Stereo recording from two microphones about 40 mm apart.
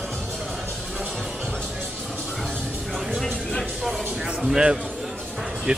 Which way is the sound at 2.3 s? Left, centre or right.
Centre.